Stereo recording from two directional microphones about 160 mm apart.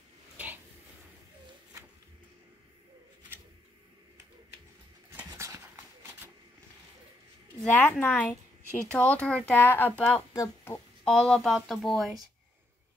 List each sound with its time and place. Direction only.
5.1 s a sound: 15° right (ahead or behind)
7.7 s speech: 10° left (ahead or behind)
11.1 s speech: 5° left (ahead or behind)